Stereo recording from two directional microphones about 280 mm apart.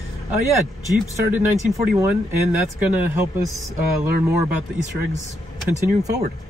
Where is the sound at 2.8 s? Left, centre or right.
Centre.